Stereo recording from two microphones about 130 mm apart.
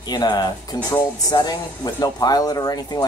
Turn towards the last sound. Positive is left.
turn(degrees=30)  # may be behind; listen again after turning